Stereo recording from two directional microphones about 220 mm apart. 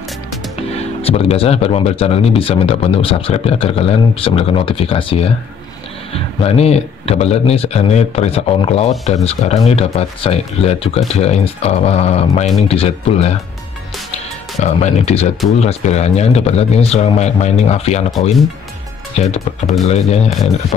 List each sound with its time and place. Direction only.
1.0 s speech: 25° left (ahead or behind)
6.4 s speech: 25° left (ahead or behind)
14.6 s speech: 30° left (ahead or behind)
19.6 s speech: centre (ahead or behind)
19.9 s speech: 30° left (ahead or behind)